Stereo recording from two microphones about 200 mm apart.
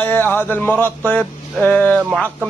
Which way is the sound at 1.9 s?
5° right (ahead or behind).